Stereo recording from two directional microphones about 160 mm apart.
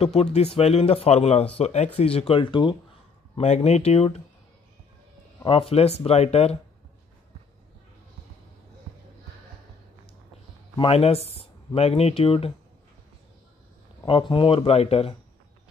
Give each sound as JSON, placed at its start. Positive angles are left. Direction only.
{"t": 0.0, "sound": "speech", "side_deg": 40}
{"t": 3.3, "sound": "speech", "side_deg": 45}
{"t": 5.4, "sound": "speech", "side_deg": 35}
{"t": 10.8, "sound": "speech", "side_deg": 40}
{"t": 14.0, "sound": "speech", "side_deg": 30}